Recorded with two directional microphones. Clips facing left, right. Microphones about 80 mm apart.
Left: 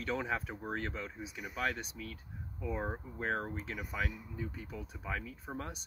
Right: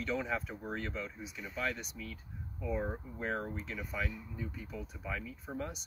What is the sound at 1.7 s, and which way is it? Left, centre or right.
Speech, left.